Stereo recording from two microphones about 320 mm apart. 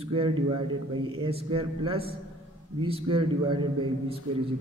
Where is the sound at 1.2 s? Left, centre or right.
Centre.